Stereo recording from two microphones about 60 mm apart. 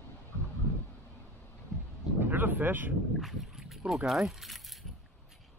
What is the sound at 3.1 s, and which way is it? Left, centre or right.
Speech, centre.